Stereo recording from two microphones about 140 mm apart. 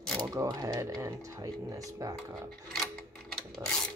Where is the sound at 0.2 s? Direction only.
25° right (ahead or behind).